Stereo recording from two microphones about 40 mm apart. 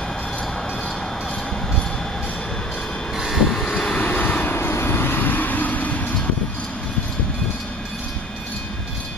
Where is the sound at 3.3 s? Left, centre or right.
Centre.